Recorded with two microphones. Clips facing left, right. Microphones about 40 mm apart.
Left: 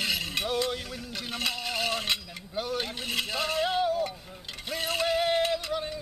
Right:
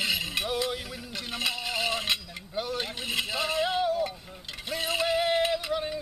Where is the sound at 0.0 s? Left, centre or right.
Centre.